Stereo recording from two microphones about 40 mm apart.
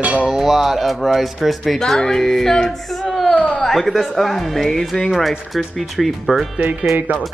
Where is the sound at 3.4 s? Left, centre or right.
Left.